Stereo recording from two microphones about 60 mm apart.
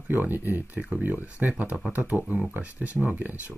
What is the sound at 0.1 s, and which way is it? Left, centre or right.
Speech, right.